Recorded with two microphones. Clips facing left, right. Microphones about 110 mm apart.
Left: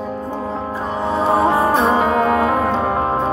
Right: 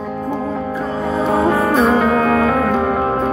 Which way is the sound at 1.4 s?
20° left (ahead or behind).